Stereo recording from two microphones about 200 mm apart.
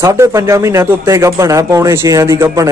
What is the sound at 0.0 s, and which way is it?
A man's voice, 15° right (ahead or behind).